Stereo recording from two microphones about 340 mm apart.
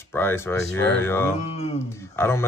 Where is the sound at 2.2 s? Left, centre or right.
Centre.